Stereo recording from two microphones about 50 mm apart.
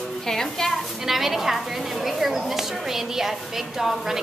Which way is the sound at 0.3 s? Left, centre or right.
Centre.